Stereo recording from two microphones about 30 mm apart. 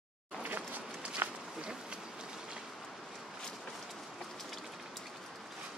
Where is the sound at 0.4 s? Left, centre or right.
Right.